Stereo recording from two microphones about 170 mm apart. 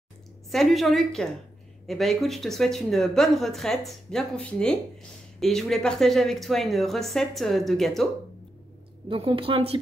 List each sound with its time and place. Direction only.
0.5 s speech: centre (ahead or behind)
9.1 s a woman's voice: 35° right (ahead or behind)